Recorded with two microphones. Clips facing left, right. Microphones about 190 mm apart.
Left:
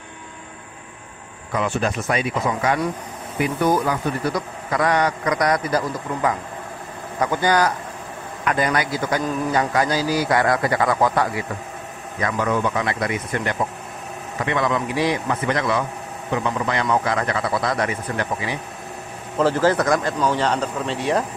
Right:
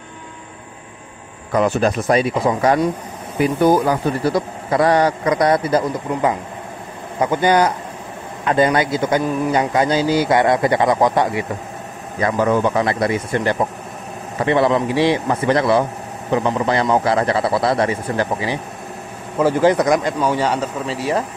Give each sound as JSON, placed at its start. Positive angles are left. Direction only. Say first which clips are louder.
{"t": 1.5, "sound": "a man's voice", "louder": "right 6 dB", "side_deg": -40}
{"t": 19.3, "sound": "speech", "louder": "right 3 dB", "side_deg": -10}